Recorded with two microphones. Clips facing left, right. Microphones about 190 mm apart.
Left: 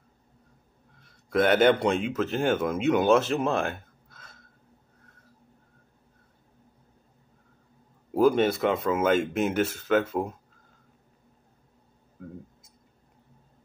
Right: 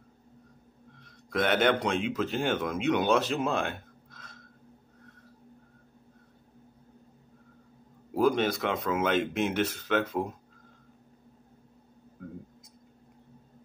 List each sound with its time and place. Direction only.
1.0 s a man's voice: 5° left (ahead or behind)
8.2 s speech: 5° left (ahead or behind)